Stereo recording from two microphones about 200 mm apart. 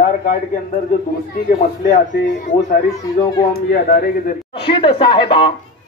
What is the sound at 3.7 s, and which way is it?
Speech, 50° left (ahead or behind).